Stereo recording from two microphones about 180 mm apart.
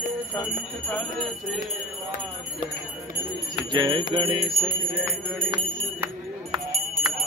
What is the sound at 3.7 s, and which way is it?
Speech, 25° right (ahead or behind).